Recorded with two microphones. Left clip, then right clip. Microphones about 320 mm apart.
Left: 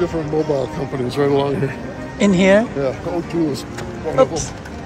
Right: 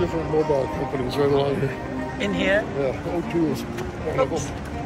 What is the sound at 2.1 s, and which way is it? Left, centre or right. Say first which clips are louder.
Speech: left 8 dB; centre.